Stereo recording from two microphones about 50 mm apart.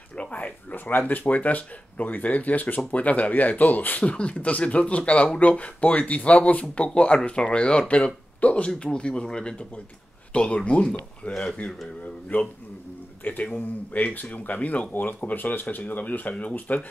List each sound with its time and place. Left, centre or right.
0.2 s speech: left
4.0 s speech: left
12.3 s speech: left